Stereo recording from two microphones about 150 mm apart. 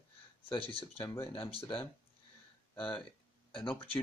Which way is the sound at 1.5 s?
35° left (ahead or behind).